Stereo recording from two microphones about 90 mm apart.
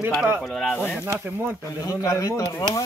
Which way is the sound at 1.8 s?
40° left (ahead or behind).